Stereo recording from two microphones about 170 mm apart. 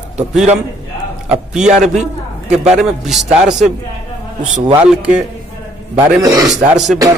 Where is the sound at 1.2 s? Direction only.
5° right (ahead or behind).